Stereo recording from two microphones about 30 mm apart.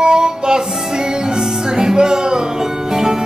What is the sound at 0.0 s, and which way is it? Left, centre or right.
Music, right.